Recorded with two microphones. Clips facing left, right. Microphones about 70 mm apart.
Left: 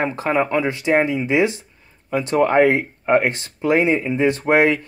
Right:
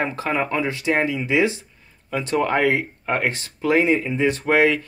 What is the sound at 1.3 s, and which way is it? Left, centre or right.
Speech, left.